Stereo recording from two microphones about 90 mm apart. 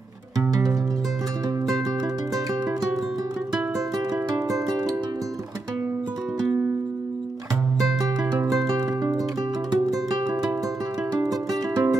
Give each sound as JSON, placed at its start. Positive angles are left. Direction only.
{"t": 0.4, "sound": "music", "side_deg": -45}
{"t": 8.0, "sound": "music", "side_deg": -40}
{"t": 11.7, "sound": "music", "side_deg": -45}